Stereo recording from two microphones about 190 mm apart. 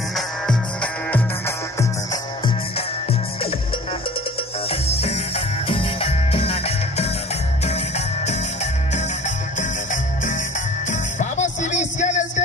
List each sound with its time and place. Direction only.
4.6 s music: 30° left (ahead or behind)
10.9 s music: 40° left (ahead or behind)